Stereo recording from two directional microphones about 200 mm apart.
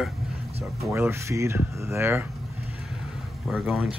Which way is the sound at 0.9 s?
15° right (ahead or behind).